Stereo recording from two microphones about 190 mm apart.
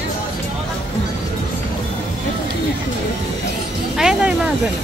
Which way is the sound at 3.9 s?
5° right (ahead or behind).